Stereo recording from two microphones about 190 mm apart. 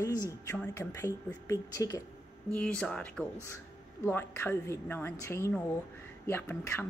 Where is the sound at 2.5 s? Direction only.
5° left (ahead or behind).